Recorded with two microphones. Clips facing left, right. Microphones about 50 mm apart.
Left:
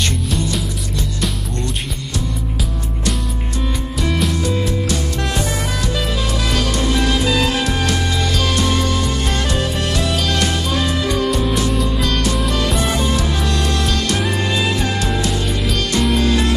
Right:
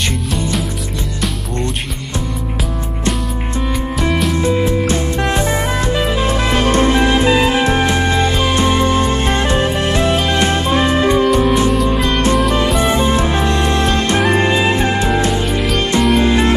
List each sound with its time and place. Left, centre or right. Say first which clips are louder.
4.4 s music: right 5 dB; right
12.6 s music: right 4 dB; centre
12.9 s music: right 5 dB; right